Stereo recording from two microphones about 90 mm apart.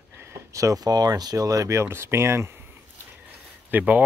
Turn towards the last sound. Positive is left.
turn(degrees=-20)  # may be behind; listen again after turning